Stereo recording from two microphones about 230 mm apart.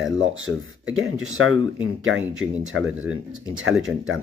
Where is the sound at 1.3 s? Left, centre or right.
Right.